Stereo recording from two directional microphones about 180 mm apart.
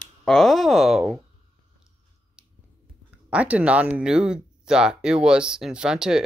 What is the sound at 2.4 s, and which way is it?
Finger snapping, 5° right (ahead or behind).